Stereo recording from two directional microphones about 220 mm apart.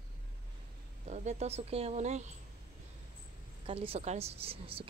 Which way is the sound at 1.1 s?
30° right (ahead or behind).